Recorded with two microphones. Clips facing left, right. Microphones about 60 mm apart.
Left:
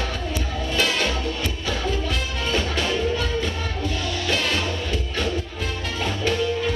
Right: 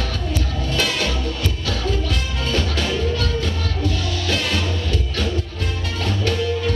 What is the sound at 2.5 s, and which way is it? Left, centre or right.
Music, centre.